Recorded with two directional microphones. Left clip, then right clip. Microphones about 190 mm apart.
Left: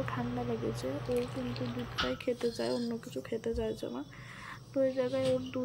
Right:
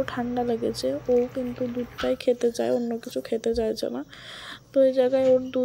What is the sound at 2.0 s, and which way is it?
A child's voice, 20° right (ahead or behind).